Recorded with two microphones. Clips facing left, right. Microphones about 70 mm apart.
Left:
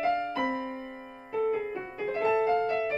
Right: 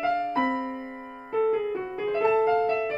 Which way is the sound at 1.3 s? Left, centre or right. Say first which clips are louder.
Right 4 dB; right.